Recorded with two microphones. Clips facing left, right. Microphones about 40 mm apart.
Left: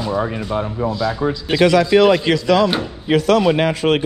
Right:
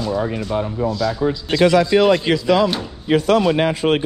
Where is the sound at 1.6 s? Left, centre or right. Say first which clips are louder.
Left 1 dB; left.